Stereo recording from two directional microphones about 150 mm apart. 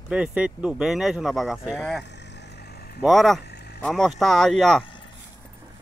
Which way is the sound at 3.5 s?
90° left.